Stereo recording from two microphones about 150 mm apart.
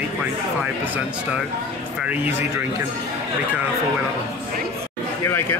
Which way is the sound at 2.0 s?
10° right (ahead or behind).